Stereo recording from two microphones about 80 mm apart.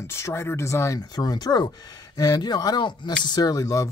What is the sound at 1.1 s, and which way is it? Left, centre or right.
Speech, left.